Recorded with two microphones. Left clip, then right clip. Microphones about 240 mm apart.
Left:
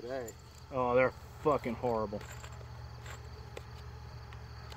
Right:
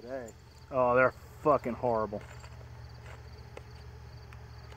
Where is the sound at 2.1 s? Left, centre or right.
Left.